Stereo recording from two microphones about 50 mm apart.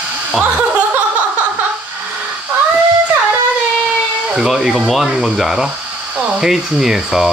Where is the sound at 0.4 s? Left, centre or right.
Right.